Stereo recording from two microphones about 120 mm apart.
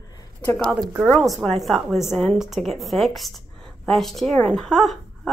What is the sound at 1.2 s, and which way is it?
Speech, centre (ahead or behind).